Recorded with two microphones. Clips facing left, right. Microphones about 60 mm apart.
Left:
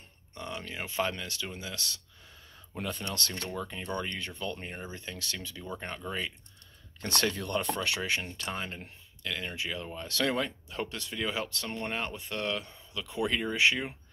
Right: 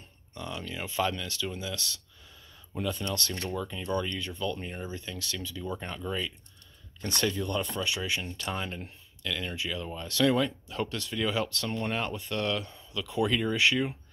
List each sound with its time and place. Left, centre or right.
0.3 s speech: left
7.0 s speech: left
8.5 s speech: left